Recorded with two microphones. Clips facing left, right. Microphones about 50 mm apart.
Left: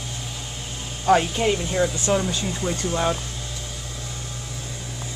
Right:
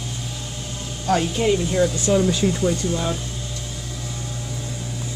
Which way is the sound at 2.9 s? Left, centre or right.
Left.